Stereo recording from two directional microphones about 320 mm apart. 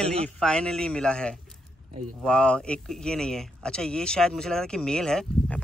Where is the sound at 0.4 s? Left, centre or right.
Centre.